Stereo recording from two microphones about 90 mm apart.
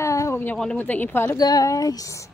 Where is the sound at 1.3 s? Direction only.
45° left (ahead or behind).